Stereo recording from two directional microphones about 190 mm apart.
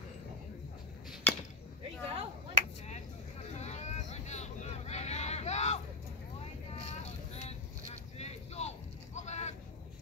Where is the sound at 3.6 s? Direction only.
35° left (ahead or behind).